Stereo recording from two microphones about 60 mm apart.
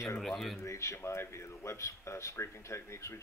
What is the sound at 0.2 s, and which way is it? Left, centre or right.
Speech, centre.